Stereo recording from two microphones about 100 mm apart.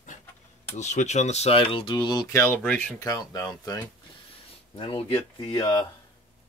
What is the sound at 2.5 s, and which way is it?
Speech, 10° left (ahead or behind).